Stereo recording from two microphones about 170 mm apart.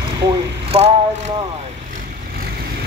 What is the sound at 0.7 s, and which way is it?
Vehicle, 35° right (ahead or behind).